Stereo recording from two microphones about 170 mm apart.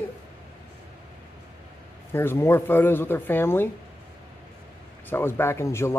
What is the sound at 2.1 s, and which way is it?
Speech, 15° left (ahead or behind).